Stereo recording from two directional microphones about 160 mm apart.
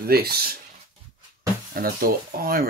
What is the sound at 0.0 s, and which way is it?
Speech, 75° right (ahead or behind).